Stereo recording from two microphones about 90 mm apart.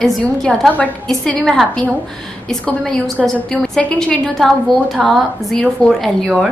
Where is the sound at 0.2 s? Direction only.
5° left (ahead or behind).